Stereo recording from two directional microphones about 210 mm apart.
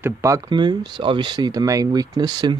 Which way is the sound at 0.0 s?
15° right (ahead or behind).